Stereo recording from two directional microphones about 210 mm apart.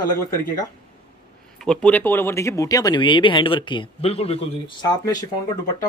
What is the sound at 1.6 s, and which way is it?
Speech, 5° left (ahead or behind).